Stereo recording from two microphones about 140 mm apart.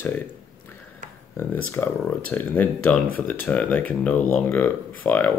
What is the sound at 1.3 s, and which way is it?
Speech, 15° left (ahead or behind).